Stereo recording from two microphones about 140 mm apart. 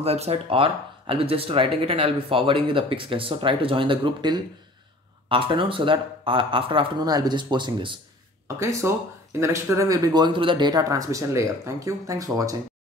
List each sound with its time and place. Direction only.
0.0 s speech: 50° right (ahead or behind)
8.5 s speech: 20° right (ahead or behind)